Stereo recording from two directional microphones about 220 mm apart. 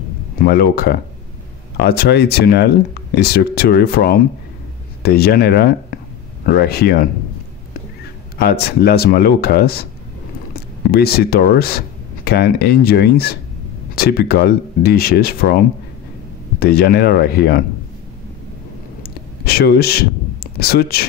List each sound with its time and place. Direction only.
0.4 s speech: 45° left (ahead or behind)
8.4 s speech: 45° left (ahead or behind)
19.4 s speech: 45° left (ahead or behind)